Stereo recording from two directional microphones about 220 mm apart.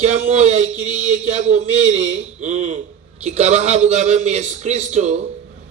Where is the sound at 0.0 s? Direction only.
30° right (ahead or behind).